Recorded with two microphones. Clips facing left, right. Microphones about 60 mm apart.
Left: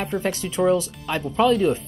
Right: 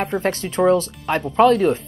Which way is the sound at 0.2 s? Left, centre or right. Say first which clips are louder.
Right 3 dB; right.